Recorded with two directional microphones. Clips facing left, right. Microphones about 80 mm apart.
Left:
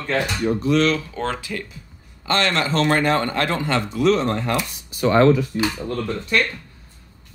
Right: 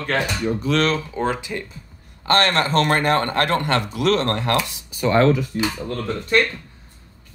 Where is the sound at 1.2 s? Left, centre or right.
Centre.